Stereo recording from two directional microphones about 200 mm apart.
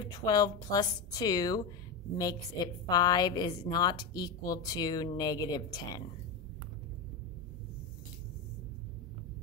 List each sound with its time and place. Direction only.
0.0 s a woman's voice: 20° left (ahead or behind)